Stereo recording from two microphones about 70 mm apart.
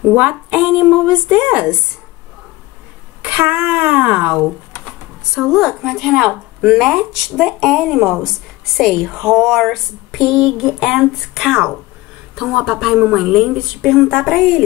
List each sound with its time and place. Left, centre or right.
0.3 s speech: centre
3.3 s speech: right
5.3 s a woman's voice: centre